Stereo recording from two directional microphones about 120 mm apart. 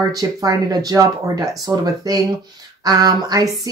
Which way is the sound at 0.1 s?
30° right (ahead or behind).